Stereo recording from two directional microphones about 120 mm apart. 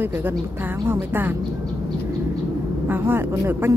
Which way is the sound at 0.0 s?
25° right (ahead or behind).